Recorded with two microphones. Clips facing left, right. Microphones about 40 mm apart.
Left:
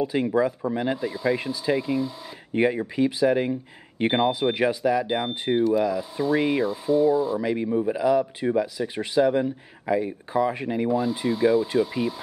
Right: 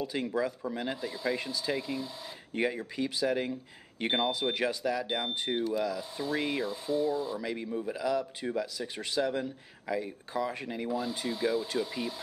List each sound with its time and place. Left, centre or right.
0.0 s speech: centre
1.0 s ratchet: centre
2.5 s speech: left
5.1 s ratchet: centre
7.3 s speech: left
10.9 s wood: centre